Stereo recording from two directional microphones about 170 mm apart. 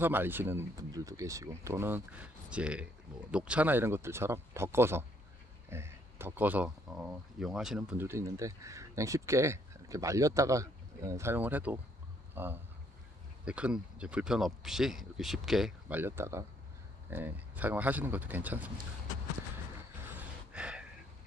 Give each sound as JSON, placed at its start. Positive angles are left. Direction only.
{"t": 0.0, "sound": "speech", "side_deg": -10}
{"t": 8.0, "sound": "speech", "side_deg": -15}
{"t": 16.0, "sound": "speech", "side_deg": -15}
{"t": 20.2, "sound": "gasp", "side_deg": -5}